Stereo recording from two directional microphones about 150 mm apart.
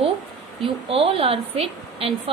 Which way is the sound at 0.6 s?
40° right (ahead or behind).